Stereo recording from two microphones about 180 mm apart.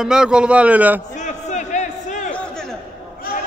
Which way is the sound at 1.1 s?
40° left (ahead or behind).